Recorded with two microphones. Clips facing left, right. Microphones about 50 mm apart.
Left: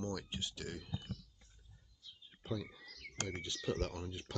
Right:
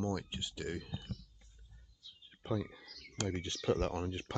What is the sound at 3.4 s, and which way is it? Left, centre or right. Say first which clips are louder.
Speech: right 5 dB; right.